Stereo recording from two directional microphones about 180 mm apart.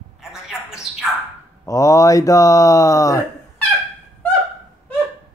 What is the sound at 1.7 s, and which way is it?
Speech, 20° left (ahead or behind).